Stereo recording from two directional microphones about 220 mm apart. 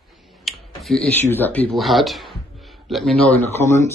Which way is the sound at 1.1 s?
10° left (ahead or behind).